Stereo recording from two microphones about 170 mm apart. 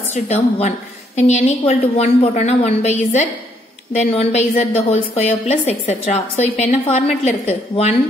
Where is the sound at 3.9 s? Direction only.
40° left (ahead or behind).